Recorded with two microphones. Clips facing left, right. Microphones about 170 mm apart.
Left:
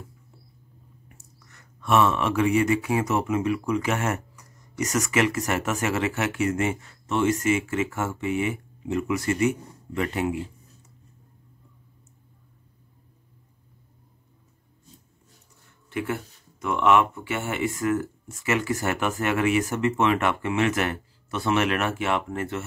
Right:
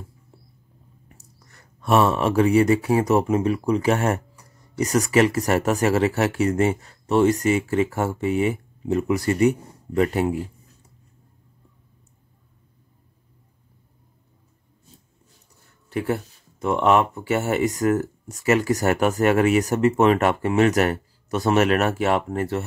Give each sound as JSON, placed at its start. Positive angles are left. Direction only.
{"t": 1.0, "sound": "speech", "side_deg": -35}
{"t": 15.9, "sound": "speech", "side_deg": -35}